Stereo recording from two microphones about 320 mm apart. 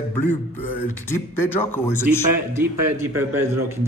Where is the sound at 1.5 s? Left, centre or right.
Centre.